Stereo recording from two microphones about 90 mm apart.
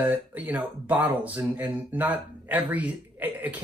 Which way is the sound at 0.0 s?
20° right (ahead or behind).